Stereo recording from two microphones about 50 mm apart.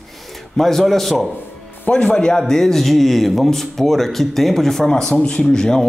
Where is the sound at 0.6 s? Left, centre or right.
Centre.